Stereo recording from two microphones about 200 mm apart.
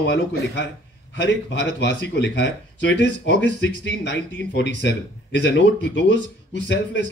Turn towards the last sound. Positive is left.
turn(degrees=60)  # may be behind; listen again after turning